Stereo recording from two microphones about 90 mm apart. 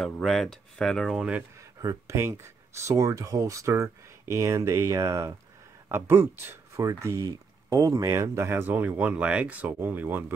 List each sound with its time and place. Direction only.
0.0 s speech: 5° left (ahead or behind)
1.1 s speech: 10° right (ahead or behind)
1.6 s speech: 40° right (ahead or behind)
5.9 s speech: 25° right (ahead or behind)